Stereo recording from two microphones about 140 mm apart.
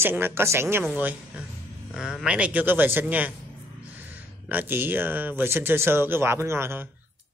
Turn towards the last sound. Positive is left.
turn(degrees=-15)  # may be behind; listen again after turning